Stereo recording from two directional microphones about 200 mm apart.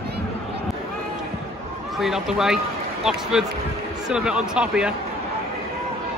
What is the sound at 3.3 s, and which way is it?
Speech, centre (ahead or behind).